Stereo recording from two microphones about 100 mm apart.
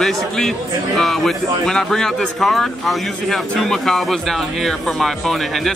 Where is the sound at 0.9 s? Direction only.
Centre (ahead or behind).